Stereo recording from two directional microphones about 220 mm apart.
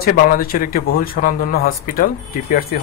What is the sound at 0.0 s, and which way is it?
Speech, 40° left (ahead or behind).